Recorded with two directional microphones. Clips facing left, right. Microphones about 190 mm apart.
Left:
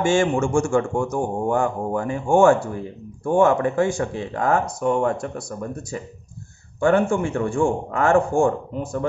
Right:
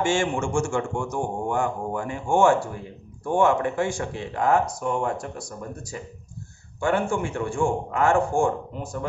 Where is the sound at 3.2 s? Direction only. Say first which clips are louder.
Left 4 dB; 40° left (ahead or behind).